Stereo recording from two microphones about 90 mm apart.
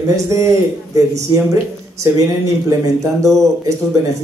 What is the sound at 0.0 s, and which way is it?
Speech, 35° right (ahead or behind).